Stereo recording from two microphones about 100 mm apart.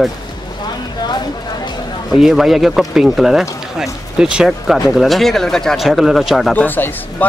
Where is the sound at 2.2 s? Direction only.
Centre (ahead or behind).